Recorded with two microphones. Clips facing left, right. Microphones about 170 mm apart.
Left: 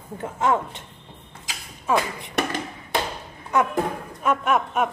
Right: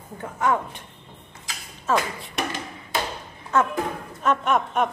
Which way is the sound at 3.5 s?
15° left (ahead or behind).